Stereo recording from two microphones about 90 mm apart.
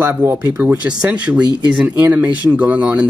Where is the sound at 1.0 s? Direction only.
10° right (ahead or behind).